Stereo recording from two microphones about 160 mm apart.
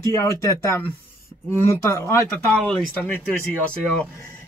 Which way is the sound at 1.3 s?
20° left (ahead or behind).